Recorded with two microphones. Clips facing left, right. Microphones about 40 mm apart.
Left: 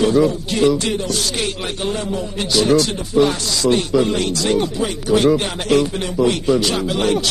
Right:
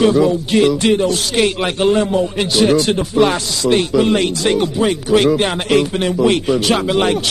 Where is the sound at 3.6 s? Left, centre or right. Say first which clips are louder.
Right 2 dB; right.